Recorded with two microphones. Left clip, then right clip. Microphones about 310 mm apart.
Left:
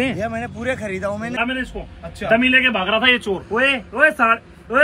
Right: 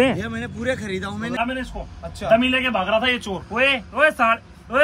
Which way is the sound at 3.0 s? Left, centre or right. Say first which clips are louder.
Left 6 dB; right.